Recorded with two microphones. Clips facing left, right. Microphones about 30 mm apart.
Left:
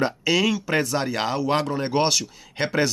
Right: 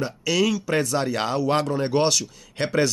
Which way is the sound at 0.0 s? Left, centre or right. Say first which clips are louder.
Left 1 dB; left.